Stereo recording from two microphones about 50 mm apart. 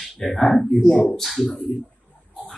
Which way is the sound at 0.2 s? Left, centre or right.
Centre.